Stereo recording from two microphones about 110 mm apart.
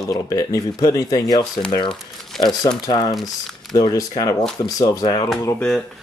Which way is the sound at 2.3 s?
5° left (ahead or behind).